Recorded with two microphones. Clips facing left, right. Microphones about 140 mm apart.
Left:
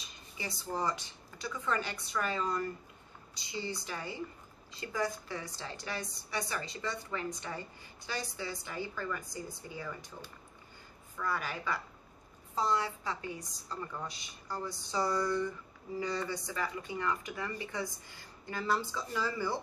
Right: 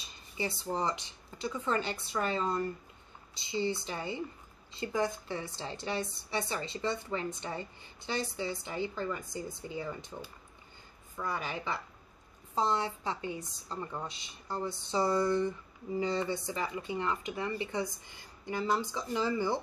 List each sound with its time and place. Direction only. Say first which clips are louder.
0.4 s a woman's voice: right 3 dB; 25° right (ahead or behind)
11.1 s a woman's voice: even; 20° right (ahead or behind)